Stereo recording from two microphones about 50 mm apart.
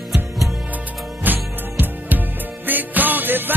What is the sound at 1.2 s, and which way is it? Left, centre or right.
Music, right.